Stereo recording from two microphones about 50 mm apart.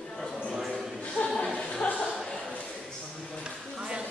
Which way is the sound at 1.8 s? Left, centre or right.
Left.